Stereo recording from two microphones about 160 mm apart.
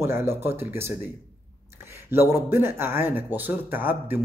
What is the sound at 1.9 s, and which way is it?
Speech, 15° right (ahead or behind).